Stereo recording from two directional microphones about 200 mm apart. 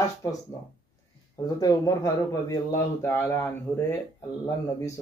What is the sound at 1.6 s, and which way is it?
Speech, 15° left (ahead or behind).